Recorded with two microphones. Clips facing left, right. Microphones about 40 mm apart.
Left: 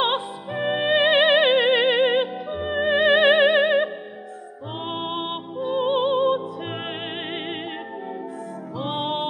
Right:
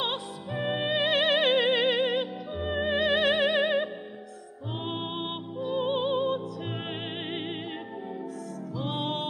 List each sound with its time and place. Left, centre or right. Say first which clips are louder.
0.5 s music: left 7 dB; left
2.5 s music: left 6 dB; centre
8.7 s music: left 5 dB; left